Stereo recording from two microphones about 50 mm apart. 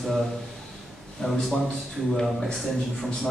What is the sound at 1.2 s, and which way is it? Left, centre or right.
Speech, centre.